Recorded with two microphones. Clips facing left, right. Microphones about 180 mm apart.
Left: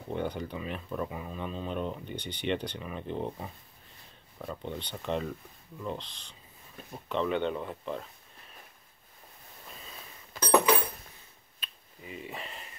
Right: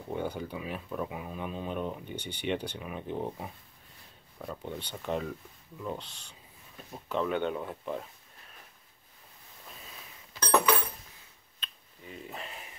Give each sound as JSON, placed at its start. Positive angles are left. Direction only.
{"t": 0.1, "sound": "speech", "side_deg": -5}
{"t": 10.3, "sound": "a sound", "side_deg": 50}
{"t": 11.6, "sound": "finger snapping", "side_deg": 5}